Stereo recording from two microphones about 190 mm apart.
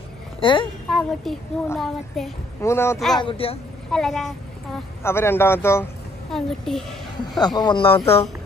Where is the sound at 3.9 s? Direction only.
Centre (ahead or behind).